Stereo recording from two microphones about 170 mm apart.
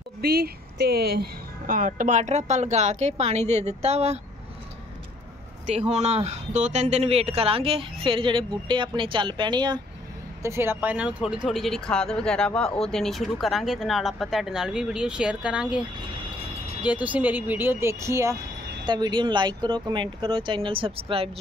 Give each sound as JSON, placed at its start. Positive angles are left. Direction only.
{"t": 0.2, "sound": "speech", "side_deg": -65}
{"t": 5.7, "sound": "speech", "side_deg": -40}
{"t": 10.4, "sound": "speech", "side_deg": -15}
{"t": 11.4, "sound": "speech", "side_deg": 0}